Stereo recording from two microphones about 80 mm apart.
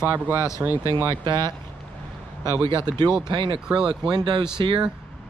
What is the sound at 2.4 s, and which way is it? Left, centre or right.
Speech, right.